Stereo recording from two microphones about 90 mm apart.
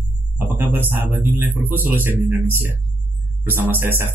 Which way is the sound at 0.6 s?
25° right (ahead or behind).